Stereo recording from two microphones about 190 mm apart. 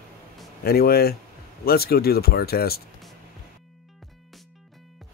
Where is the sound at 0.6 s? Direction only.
55° left (ahead or behind).